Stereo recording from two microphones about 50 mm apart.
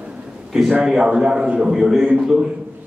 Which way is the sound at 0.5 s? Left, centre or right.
Centre.